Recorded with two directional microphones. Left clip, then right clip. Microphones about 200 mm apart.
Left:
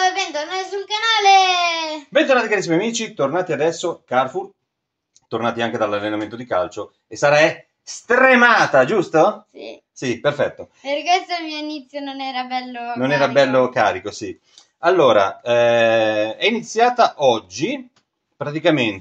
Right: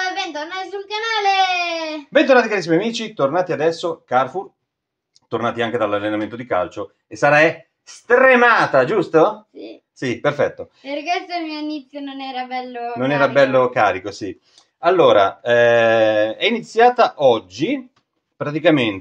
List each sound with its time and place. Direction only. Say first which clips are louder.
0.1 s a sound: left 2 dB; 40° left (ahead or behind)
2.1 s speech: right 2 dB; 25° right (ahead or behind)
10.8 s a woman's voice: left 5 dB; 40° left (ahead or behind)
13.0 s speech: right 1 dB; 10° right (ahead or behind)